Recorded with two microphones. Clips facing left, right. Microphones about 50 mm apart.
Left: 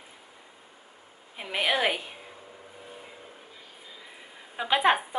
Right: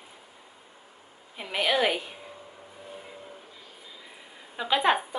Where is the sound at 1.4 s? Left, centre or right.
Centre.